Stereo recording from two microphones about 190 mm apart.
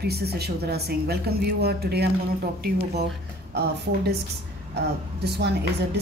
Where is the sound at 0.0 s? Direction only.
55° right (ahead or behind).